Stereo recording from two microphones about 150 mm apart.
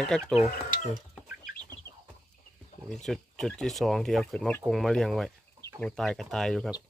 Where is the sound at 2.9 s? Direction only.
Centre (ahead or behind).